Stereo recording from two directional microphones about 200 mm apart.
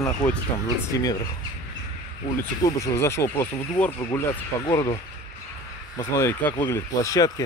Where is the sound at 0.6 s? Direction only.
20° left (ahead or behind).